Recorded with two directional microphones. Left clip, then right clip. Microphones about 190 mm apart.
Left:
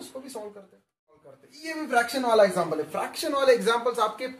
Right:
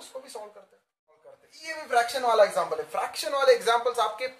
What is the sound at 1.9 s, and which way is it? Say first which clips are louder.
Speech: left 1 dB; 20° right (ahead or behind).